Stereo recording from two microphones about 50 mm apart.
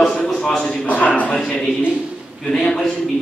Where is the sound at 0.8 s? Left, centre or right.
Left.